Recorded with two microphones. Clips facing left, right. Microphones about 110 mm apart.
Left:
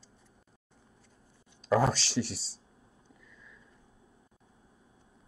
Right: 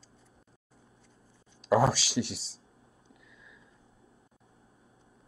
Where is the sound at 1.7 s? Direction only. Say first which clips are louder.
Right 2 dB; 10° right (ahead or behind).